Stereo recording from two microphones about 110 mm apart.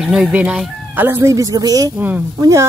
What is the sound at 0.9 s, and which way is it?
Speech, 20° right (ahead or behind).